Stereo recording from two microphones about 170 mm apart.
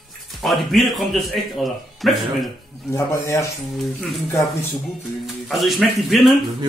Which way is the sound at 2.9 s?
15° left (ahead or behind).